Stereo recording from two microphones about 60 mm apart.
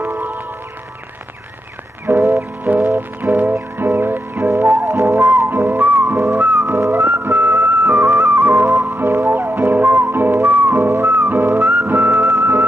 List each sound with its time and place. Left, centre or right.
0.0 s music: right
2.0 s music: right
4.5 s music: right
5.4 s whistling: right
6.3 s music: right
6.6 s music: right
7.8 s music: right
8.8 s music: right
11.9 s music: right